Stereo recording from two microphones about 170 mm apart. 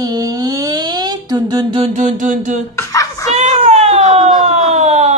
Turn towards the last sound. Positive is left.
turn(degrees=-40)  # may be behind; listen again after turning